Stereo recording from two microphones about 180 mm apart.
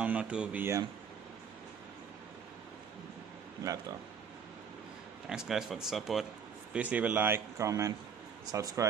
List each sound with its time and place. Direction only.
0.0 s speech: 5° right (ahead or behind)
3.6 s speech: 20° right (ahead or behind)
5.3 s speech: 5° right (ahead or behind); by 8.8 s 20° right (ahead or behind)